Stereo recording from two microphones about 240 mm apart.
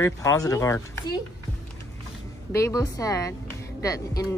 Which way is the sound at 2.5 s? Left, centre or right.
Centre.